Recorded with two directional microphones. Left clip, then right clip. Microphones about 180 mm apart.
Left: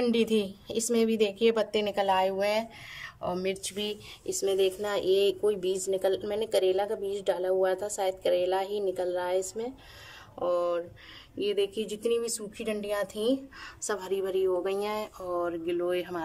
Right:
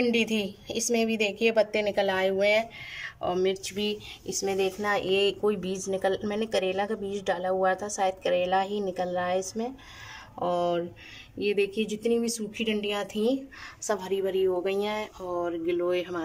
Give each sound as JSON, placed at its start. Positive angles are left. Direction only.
{"t": 0.0, "sound": "a woman's voice", "side_deg": 5}